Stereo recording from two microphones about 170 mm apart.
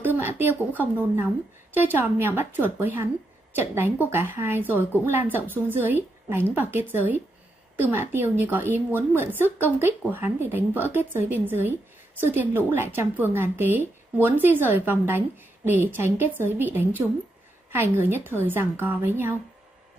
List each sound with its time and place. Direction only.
0.2 s a woman's voice: 15° right (ahead or behind)